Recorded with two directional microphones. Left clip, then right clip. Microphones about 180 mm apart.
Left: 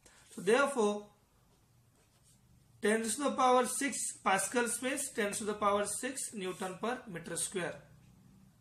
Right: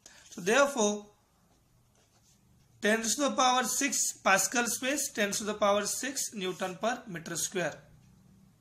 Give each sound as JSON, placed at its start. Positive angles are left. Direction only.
{"t": 0.5, "sound": "speech", "side_deg": -50}
{"t": 2.8, "sound": "speech", "side_deg": -50}